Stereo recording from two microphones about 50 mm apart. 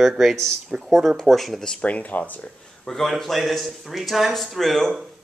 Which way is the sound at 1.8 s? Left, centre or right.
Left.